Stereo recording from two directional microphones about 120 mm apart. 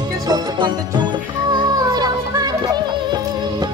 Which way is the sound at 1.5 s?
35° right (ahead or behind).